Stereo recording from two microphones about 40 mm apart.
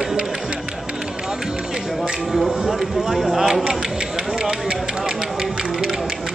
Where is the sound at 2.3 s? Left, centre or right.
Centre.